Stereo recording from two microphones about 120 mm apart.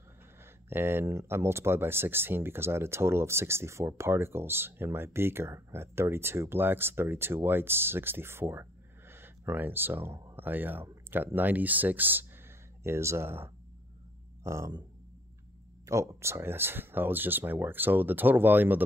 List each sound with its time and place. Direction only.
0.4 s speech: 20° right (ahead or behind)
15.8 s speech: 25° right (ahead or behind)